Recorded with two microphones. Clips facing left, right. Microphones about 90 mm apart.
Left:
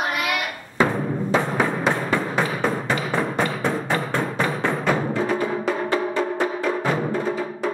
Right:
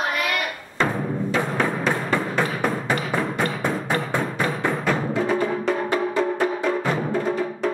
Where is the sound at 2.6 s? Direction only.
10° right (ahead or behind).